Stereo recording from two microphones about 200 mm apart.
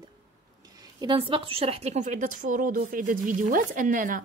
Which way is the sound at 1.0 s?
25° right (ahead or behind).